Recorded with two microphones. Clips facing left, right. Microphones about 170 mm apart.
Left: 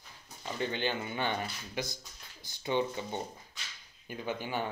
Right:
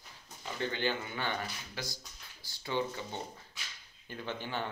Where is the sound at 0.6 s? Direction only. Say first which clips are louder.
Left 1 dB; 20° left (ahead or behind).